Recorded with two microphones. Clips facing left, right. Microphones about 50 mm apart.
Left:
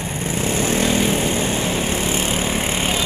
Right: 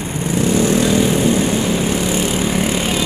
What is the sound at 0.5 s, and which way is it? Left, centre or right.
Vehicle, left.